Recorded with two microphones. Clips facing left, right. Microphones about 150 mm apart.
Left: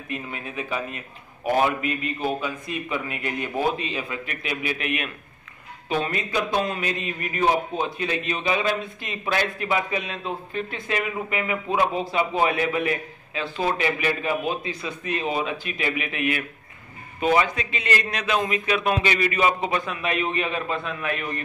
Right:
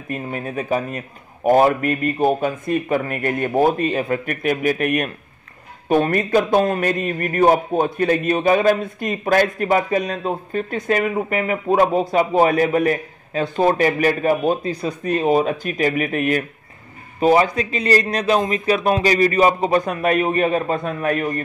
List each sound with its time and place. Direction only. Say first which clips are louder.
0.1 s a man's voice: right 7 dB; 45° right (ahead or behind)